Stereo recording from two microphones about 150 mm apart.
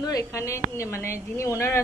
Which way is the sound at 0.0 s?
20° left (ahead or behind).